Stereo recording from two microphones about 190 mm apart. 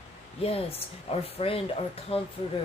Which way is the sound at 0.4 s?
30° left (ahead or behind).